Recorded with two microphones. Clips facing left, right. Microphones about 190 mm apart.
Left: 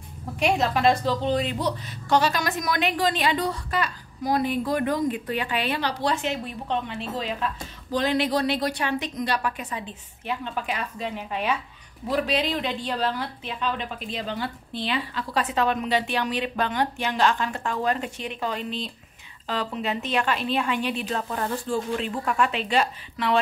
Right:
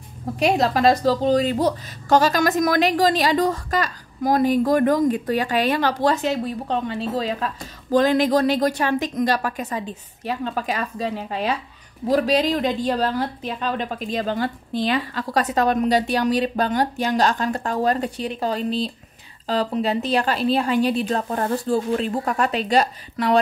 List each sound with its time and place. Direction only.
0.4 s a woman's voice: 40° right (ahead or behind)